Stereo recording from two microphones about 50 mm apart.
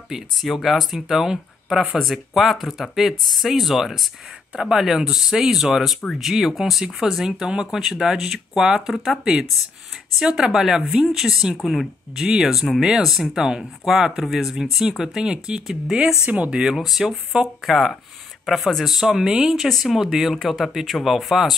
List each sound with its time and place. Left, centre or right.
0.1 s speech: centre
8.9 s speech: centre
9.2 s speech: centre
16.3 s speech: right
16.7 s speech: centre
18.9 s speech: centre
19.5 s speech: centre